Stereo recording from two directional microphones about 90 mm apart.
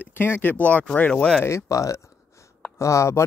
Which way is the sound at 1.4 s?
30° left (ahead or behind).